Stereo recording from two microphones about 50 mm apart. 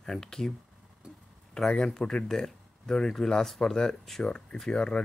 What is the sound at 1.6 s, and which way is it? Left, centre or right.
Speech, centre.